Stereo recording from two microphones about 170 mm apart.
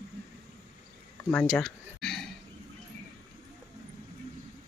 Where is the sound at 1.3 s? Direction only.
Centre (ahead or behind).